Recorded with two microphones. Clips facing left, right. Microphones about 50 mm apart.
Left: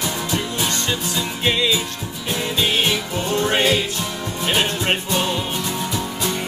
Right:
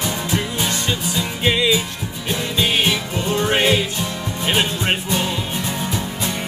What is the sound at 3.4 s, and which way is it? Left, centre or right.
Music, centre.